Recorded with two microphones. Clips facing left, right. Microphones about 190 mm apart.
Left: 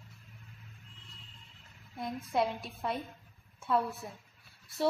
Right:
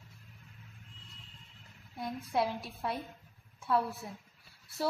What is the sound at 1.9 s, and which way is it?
Speech, 5° right (ahead or behind).